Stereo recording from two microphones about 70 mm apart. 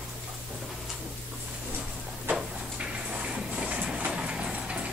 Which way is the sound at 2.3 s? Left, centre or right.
Centre.